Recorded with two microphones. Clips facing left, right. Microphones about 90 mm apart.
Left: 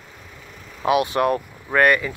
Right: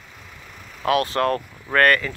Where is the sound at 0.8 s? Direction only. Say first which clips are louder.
Left 1 dB; 15° left (ahead or behind).